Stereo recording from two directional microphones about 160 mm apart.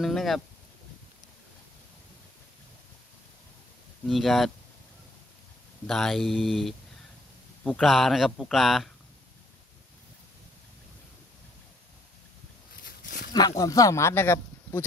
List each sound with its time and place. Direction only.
0.0 s speech: centre (ahead or behind)
4.1 s speech: centre (ahead or behind)
5.9 s speech: centre (ahead or behind)
12.8 s a sound: 80° left
13.3 s speech: 25° left (ahead or behind)